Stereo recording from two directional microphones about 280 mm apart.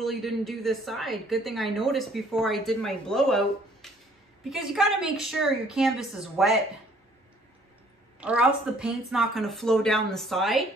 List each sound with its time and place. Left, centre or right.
0.0 s a woman's voice: centre
8.2 s a woman's voice: centre